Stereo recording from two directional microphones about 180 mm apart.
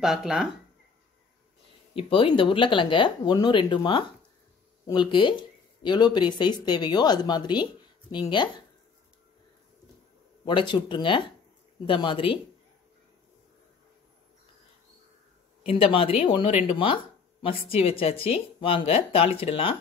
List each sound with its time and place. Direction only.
0.0 s speech: centre (ahead or behind)
2.0 s speech: 30° left (ahead or behind)
10.4 s speech: 25° left (ahead or behind)
15.6 s speech: 30° left (ahead or behind)